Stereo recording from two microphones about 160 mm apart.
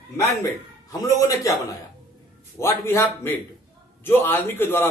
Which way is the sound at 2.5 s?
15° left (ahead or behind).